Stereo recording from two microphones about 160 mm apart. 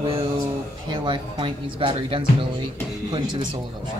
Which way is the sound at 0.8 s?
30° right (ahead or behind).